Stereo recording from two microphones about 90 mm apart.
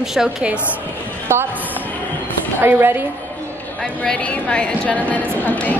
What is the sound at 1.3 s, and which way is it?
Speech, 25° right (ahead or behind).